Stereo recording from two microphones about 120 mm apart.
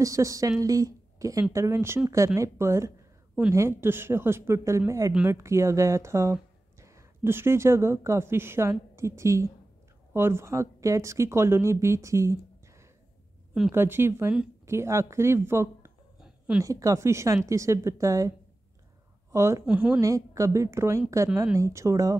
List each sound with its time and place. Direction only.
0.0 s a woman's voice: 25° right (ahead or behind)
16.2 s a sound: 5° right (ahead or behind)
16.6 s speech: 25° right (ahead or behind)
19.3 s speech: 25° right (ahead or behind)
19.6 s a woman's voice: 10° right (ahead or behind)
20.0 s speech: 25° right (ahead or behind)